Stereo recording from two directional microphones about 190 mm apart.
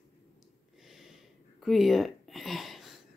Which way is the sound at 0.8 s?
Centre (ahead or behind).